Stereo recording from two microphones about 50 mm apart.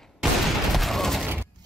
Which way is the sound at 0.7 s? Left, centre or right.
Centre.